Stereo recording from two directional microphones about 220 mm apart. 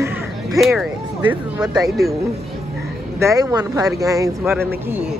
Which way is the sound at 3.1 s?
15° right (ahead or behind).